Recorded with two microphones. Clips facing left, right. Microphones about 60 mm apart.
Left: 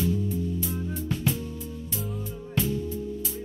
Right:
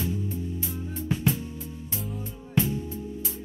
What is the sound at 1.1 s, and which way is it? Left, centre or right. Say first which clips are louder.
Music: right 3 dB; right.